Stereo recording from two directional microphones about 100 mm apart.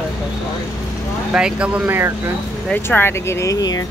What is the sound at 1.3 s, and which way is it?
Speech, 10° right (ahead or behind).